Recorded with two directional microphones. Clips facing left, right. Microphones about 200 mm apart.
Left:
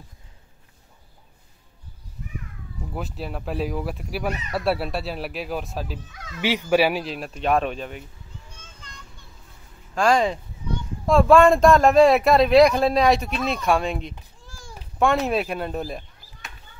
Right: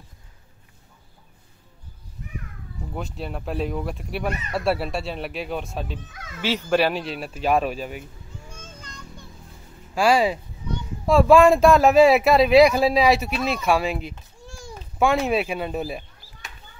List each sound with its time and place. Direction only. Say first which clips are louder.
2.9 s speech: even; centre (ahead or behind)
6.4 s speech: left 1 dB; 15° left (ahead or behind); by 8.0 s 5° right (ahead or behind)
8.5 s a sound: right 5 dB; 40° right (ahead or behind)
9.9 s speech: right 1 dB; 5° right (ahead or behind)